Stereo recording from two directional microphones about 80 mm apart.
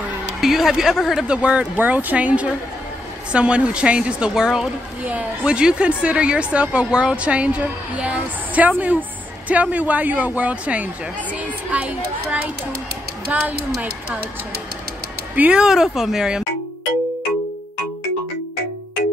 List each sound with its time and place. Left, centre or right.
0.4 s speech: centre
1.2 s a woman's voice: centre
15.3 s speech: centre
15.6 s speech: centre